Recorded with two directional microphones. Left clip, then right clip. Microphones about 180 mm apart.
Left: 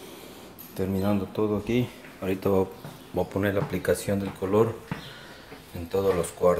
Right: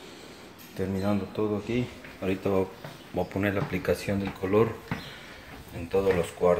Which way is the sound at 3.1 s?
5° left (ahead or behind).